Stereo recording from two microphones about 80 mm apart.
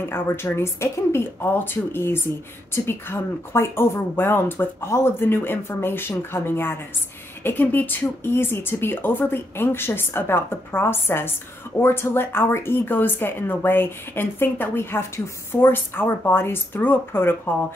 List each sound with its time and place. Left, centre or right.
0.1 s speech: left